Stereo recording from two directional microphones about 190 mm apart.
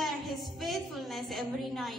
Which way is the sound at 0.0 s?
Centre (ahead or behind).